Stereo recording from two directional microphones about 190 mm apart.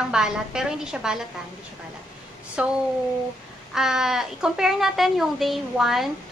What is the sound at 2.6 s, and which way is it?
Speech, 5° right (ahead or behind).